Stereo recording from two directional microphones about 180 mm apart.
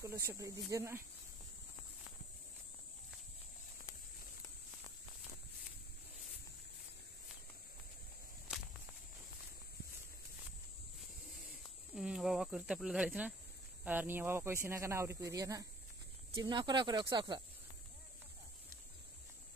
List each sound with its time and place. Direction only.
0.2 s speech: 15° right (ahead or behind)
11.6 s snake: 5° right (ahead or behind)
13.8 s speech: 10° right (ahead or behind); by 17.4 s 25° right (ahead or behind)